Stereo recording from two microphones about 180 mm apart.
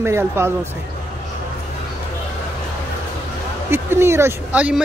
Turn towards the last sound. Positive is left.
turn(degrees=-5)  # may be behind; listen again after turning